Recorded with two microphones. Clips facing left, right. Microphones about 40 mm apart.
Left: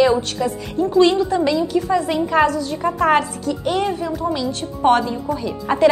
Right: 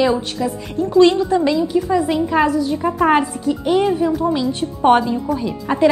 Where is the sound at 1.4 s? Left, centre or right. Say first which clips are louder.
Right 1 dB; centre.